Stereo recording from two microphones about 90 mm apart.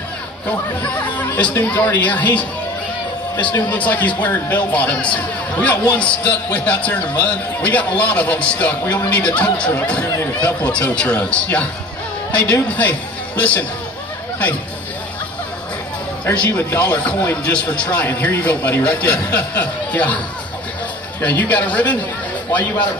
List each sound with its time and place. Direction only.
0.8 s chatter: 15° left (ahead or behind)
1.5 s speech: 20° left (ahead or behind)
3.5 s a man's voice: 20° left (ahead or behind)
16.4 s a man's voice: 20° left (ahead or behind)
21.2 s a man's voice: 15° left (ahead or behind)